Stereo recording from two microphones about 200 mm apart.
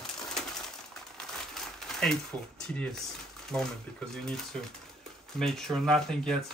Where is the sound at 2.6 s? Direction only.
5° left (ahead or behind).